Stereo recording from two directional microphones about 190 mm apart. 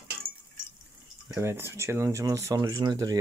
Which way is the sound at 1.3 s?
10° right (ahead or behind).